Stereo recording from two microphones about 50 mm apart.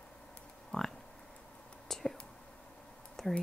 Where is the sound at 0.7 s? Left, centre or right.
Centre.